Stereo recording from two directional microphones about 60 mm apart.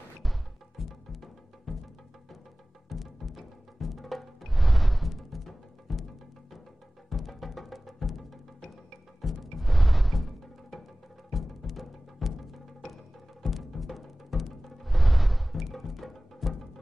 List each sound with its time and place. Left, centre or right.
0.2 s music: centre
2.9 s music: centre
7.1 s music: centre
9.2 s music: centre